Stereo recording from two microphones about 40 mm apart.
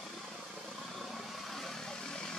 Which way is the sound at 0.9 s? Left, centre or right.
Centre.